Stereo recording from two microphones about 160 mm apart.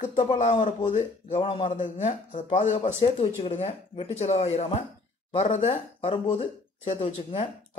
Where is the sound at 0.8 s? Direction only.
50° left (ahead or behind).